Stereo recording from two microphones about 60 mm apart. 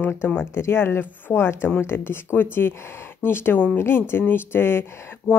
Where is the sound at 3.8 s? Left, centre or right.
Left.